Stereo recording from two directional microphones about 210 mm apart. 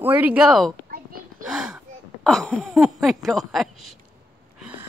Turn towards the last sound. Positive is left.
turn(degrees=0)  # may be behind; listen again after turning